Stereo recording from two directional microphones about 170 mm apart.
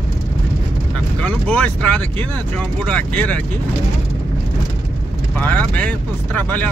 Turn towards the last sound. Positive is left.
turn(degrees=10)  # may be behind; listen again after turning